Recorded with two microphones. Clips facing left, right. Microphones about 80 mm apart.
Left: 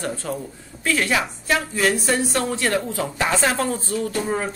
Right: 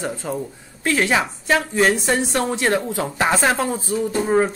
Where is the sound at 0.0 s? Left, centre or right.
Centre.